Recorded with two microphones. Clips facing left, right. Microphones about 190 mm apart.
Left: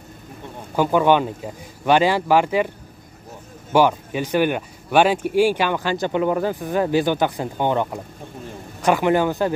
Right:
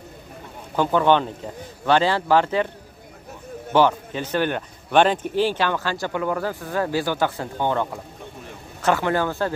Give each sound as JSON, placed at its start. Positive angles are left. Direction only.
{"t": 0.7, "sound": "a man's voice", "side_deg": 10}
{"t": 3.7, "sound": "a man's voice", "side_deg": 10}